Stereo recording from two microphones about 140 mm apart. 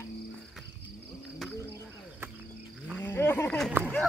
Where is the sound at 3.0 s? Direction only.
15° left (ahead or behind).